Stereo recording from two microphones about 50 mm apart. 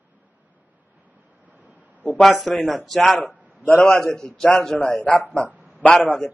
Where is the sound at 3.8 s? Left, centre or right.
Centre.